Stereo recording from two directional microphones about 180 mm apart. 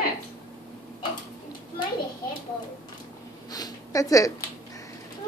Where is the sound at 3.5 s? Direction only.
20° left (ahead or behind).